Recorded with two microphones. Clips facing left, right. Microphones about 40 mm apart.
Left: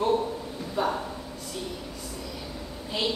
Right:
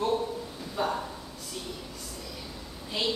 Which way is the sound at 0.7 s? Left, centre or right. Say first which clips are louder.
Left 2 dB; centre.